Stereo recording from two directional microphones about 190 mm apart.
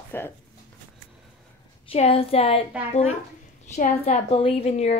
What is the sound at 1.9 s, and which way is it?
Speech, 30° left (ahead or behind).